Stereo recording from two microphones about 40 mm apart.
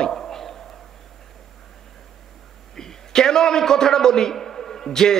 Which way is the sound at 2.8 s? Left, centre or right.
Centre.